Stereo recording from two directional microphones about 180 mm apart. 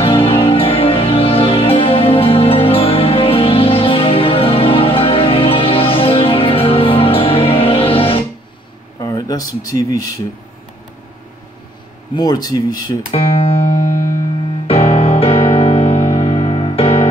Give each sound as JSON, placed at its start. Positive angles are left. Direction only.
{"t": 0.0, "sound": "music", "side_deg": 30}
{"t": 9.0, "sound": "speech", "side_deg": 20}
{"t": 12.2, "sound": "speech", "side_deg": 20}
{"t": 13.1, "sound": "music", "side_deg": 30}